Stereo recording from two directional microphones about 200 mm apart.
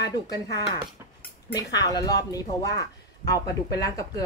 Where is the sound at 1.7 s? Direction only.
20° left (ahead or behind).